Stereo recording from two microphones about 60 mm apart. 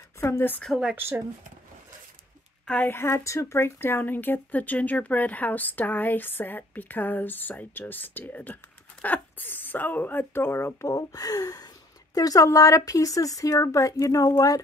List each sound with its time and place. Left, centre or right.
0.7 s speech: centre
2.8 s speech: left
10.9 s speech: left
12.4 s speech: left